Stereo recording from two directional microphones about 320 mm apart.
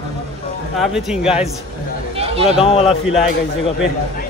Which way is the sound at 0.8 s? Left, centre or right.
Centre.